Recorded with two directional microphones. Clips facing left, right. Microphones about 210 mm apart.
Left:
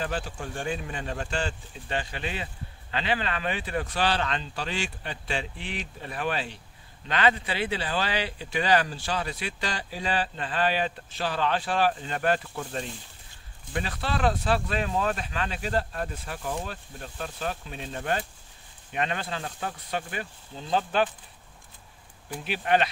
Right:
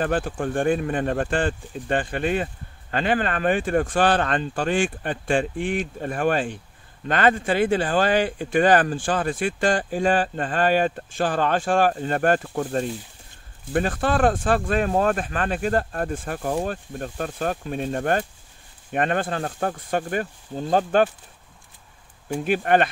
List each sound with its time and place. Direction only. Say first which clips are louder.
0.0 s speech: right 8 dB; 55° right (ahead or behind)
22.3 s speech: right 6 dB; 50° right (ahead or behind)